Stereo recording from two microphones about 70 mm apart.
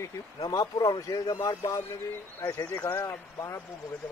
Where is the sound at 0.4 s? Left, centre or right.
Left.